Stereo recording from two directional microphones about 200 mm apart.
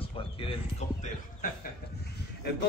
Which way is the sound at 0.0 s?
25° left (ahead or behind).